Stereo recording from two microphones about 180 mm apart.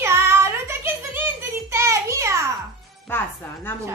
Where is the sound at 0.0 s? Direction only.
15° right (ahead or behind).